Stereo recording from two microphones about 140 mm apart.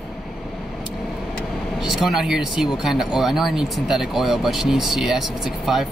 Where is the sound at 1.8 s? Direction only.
Centre (ahead or behind).